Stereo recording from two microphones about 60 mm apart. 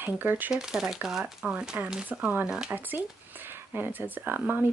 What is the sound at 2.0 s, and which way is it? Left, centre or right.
Speech, right.